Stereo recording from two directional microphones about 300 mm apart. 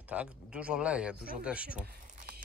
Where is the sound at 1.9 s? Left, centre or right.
Right.